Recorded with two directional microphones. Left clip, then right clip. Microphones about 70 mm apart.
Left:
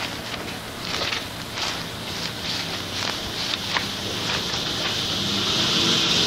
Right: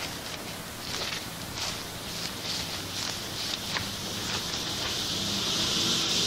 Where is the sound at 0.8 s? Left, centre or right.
Left.